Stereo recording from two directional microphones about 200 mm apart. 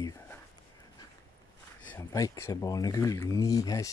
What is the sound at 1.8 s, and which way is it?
Speech, 10° left (ahead or behind).